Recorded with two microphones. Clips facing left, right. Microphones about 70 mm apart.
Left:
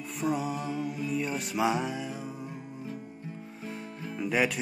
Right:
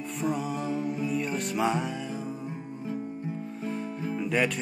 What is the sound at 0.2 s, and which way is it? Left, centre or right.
Music, centre.